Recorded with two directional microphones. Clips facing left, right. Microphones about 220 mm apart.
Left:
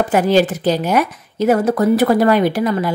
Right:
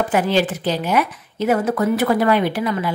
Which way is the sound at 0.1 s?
40° left (ahead or behind).